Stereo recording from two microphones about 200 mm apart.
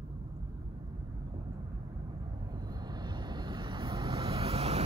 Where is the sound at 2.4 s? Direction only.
20° right (ahead or behind).